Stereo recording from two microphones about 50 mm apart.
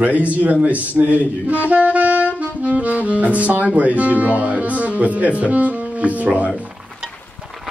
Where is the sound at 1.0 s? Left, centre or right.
Centre.